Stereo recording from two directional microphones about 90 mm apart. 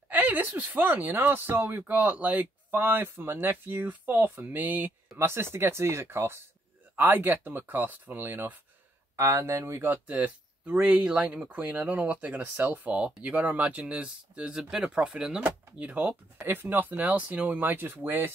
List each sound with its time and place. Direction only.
0.1 s speech: 20° right (ahead or behind)